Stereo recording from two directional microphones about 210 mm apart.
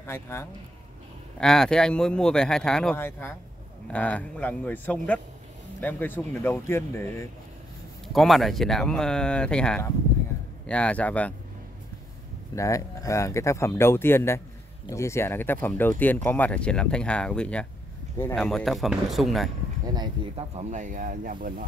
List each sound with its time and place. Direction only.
0.0 s a man's voice: 10° left (ahead or behind)
8.1 s speech: centre (ahead or behind)
12.5 s speech: 15° left (ahead or behind); by 19.5 s centre (ahead or behind)
19.9 s speech: 20° right (ahead or behind); by 21.6 s 40° right (ahead or behind)